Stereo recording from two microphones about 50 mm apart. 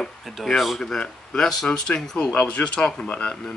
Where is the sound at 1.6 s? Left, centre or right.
Centre.